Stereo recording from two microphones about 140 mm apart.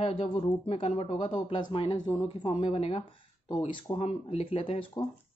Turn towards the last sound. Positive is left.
turn(degrees=40)  # may be behind; listen again after turning